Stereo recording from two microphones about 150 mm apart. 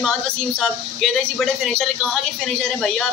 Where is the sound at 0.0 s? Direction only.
Centre (ahead or behind).